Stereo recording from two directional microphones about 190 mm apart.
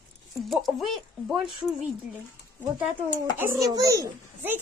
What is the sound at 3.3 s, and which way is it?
A child's voice, 15° right (ahead or behind).